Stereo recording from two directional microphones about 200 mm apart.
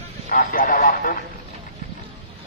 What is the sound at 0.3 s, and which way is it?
Speech, 45° left (ahead or behind).